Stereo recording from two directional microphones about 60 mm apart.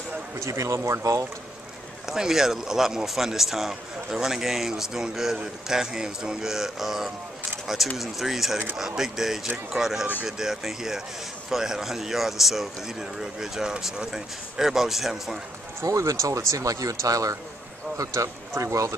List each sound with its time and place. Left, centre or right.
0.4 s speech: right
2.0 s a man's voice: centre
15.8 s speech: right